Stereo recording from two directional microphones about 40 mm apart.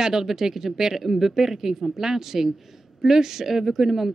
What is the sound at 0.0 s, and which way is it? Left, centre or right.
Speech, centre.